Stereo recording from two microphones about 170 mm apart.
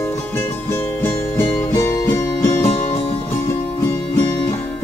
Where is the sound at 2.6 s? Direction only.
40° left (ahead or behind).